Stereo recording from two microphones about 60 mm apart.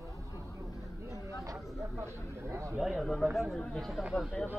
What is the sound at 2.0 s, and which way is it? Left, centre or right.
Speech, right.